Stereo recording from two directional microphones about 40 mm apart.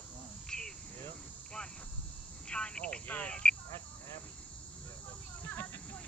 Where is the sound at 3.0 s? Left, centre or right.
Left.